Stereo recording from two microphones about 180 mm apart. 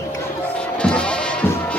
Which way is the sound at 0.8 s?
5° left (ahead or behind).